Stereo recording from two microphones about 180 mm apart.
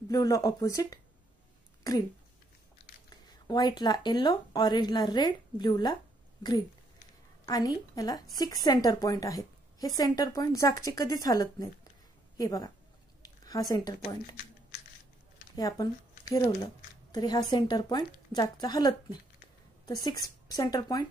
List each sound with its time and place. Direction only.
0.1 s a woman's voice: 20° left (ahead or behind)
3.4 s a woman's voice: 25° left (ahead or behind)
7.4 s a woman's voice: 20° left (ahead or behind)
13.2 s a sound: 20° left (ahead or behind)
15.5 s a woman's voice: 20° left (ahead or behind)